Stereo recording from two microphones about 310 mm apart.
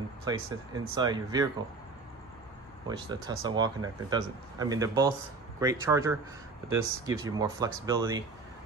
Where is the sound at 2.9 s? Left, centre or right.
Centre.